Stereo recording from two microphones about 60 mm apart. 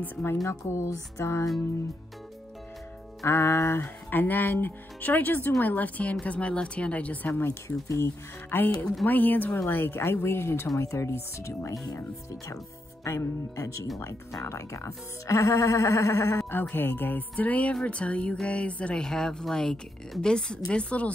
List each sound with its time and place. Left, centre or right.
0.0 s speech: left
0.5 s speech: left
3.3 s speech: left
3.8 s speech: left
7.2 s speech: left
9.7 s speech: left
10.8 s speech: left
13.0 s speech: left
16.7 s speech: left
19.0 s a woman's voice: centre